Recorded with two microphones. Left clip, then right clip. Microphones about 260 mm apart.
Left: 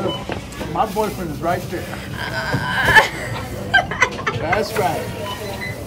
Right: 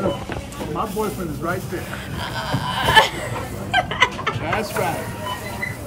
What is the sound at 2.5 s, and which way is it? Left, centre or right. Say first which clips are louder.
Sheep: left 3 dB; right.